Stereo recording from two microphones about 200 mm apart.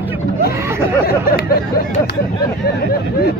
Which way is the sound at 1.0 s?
50° left (ahead or behind).